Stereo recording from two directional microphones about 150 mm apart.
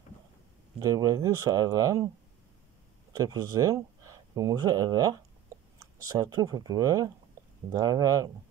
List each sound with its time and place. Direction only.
0.7 s speech: 25° right (ahead or behind)
3.1 s speech: 25° right (ahead or behind)